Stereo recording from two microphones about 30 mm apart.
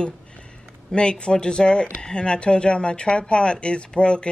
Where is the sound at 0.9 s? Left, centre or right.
Left.